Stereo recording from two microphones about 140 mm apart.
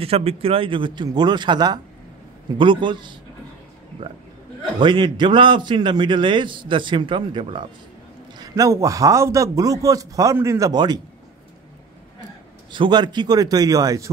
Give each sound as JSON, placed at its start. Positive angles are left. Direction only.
{"t": 0.0, "sound": "a man's voice", "side_deg": -45}
{"t": 4.7, "sound": "a man's voice", "side_deg": -35}
{"t": 8.4, "sound": "a man's voice", "side_deg": -25}
{"t": 12.7, "sound": "a man's voice", "side_deg": -35}